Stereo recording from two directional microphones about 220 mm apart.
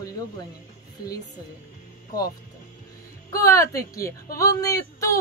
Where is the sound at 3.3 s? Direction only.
15° left (ahead or behind).